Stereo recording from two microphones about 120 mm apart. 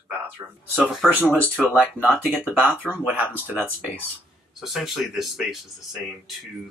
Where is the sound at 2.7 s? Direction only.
15° left (ahead or behind).